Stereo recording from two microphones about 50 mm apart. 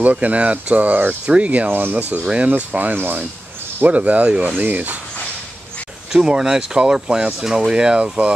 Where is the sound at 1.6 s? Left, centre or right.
Right.